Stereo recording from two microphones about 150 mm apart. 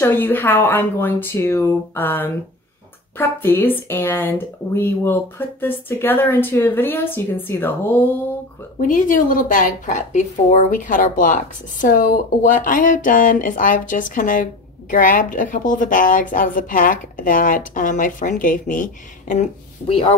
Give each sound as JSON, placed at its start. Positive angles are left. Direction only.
{"t": 0.0, "sound": "speech", "side_deg": 15}
{"t": 8.7, "sound": "a woman's voice", "side_deg": 60}